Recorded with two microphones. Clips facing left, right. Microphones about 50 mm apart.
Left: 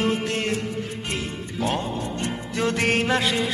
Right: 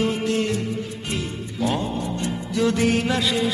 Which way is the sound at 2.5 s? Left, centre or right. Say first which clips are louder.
Right 2 dB; left.